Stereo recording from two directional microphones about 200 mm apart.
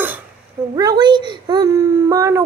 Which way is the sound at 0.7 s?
20° right (ahead or behind).